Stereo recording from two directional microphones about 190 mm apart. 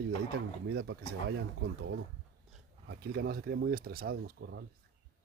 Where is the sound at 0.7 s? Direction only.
65° right (ahead or behind).